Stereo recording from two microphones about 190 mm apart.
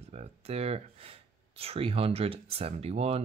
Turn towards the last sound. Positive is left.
turn(degrees=-30)  # may be behind; listen again after turning